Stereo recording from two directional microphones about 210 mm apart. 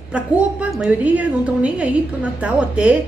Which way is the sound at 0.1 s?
5° right (ahead or behind).